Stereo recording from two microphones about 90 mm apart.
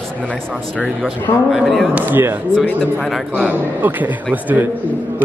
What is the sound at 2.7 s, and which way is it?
Speech, 10° left (ahead or behind).